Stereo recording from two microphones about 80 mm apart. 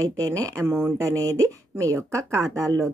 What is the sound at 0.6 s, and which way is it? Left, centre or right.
Speech, right.